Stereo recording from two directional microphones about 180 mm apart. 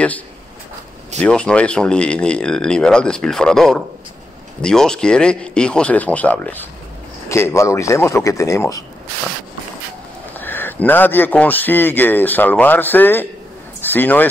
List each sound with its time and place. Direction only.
1.2 s a man's voice: 5° left (ahead or behind)
10.4 s a man's voice: 10° left (ahead or behind)